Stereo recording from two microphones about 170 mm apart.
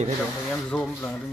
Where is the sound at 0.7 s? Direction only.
10° left (ahead or behind).